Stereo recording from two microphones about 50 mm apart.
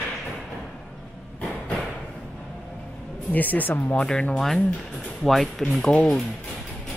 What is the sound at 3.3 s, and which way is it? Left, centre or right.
Speech, left.